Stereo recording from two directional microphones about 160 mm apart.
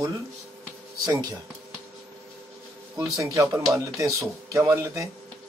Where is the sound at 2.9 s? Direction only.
20° right (ahead or behind).